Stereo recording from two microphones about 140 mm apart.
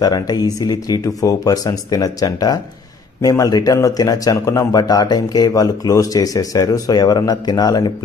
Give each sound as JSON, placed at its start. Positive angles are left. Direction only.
{"t": 0.0, "sound": "speech", "side_deg": 25}